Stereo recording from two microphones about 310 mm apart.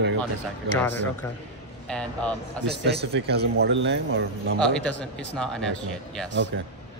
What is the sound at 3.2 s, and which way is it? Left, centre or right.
A man's voice, right.